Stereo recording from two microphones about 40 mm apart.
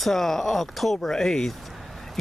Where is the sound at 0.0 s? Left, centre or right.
Centre.